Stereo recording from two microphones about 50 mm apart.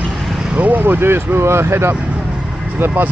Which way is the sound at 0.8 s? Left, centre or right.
Right.